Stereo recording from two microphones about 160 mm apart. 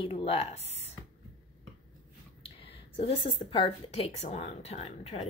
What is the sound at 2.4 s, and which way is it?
A woman's voice, 35° left (ahead or behind).